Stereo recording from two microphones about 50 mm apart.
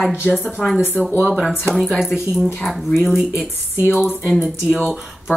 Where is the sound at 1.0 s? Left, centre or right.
Right.